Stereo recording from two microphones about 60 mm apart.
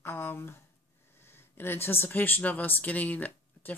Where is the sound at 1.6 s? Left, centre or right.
Left.